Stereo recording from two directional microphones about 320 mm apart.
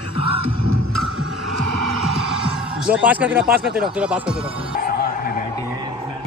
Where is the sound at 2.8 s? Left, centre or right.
Centre.